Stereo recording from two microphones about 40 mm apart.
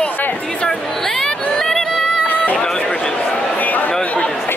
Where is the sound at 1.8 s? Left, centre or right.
Centre.